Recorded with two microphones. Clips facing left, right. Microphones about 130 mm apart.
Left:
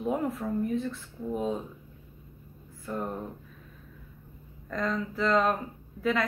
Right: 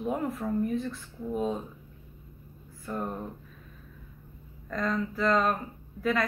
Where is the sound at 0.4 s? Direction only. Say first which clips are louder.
Right 1 dB; centre (ahead or behind).